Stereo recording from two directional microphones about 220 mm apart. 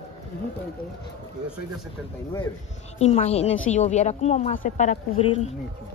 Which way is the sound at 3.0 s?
30° left (ahead or behind).